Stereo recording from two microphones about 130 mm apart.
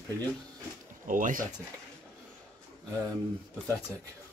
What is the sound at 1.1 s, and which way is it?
Speech, 90° right.